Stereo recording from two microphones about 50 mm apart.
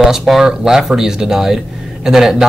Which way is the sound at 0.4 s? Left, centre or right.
Centre.